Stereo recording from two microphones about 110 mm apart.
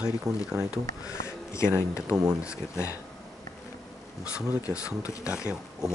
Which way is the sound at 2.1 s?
5° right (ahead or behind).